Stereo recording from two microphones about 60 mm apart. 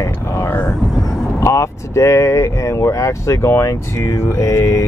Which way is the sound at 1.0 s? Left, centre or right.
Left.